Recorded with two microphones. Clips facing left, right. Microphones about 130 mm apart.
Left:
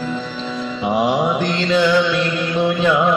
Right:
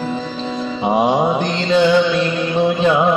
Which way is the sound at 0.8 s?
25° right (ahead or behind).